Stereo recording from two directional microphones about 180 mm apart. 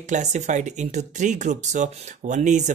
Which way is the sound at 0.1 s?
40° right (ahead or behind).